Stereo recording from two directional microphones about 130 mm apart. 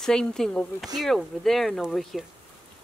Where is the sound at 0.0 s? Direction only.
5° left (ahead or behind).